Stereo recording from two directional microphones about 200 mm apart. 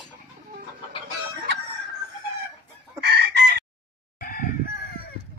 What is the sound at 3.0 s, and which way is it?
Chicken, 55° right (ahead or behind).